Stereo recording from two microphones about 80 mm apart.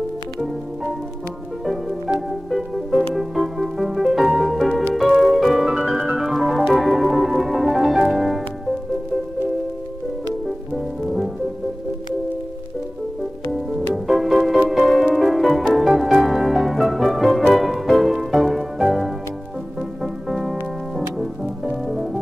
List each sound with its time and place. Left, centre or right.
1.6 s music: centre
5.8 s music: centre
6.1 s organ: centre
13.5 s music: centre